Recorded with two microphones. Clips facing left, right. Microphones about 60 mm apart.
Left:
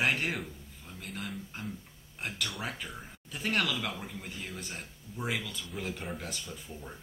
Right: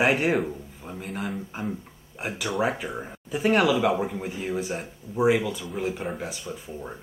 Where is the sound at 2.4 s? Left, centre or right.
Centre.